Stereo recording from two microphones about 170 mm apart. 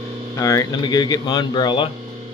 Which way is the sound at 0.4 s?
20° left (ahead or behind).